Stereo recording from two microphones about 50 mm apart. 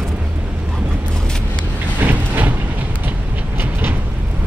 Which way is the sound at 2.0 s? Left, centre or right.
Right.